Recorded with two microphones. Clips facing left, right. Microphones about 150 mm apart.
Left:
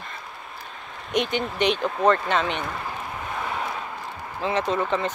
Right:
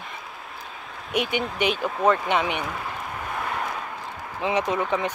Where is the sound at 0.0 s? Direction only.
5° right (ahead or behind).